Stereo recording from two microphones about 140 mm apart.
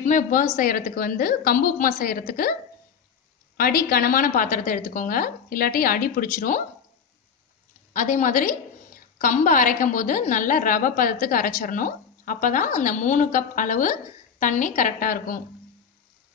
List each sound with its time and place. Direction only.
0.0 s a woman's voice: 70° left (ahead or behind); by 2.5 s 90° left
3.5 s a woman's voice: 90° left
7.9 s a woman's voice: 70° left (ahead or behind); by 15.4 s 90° left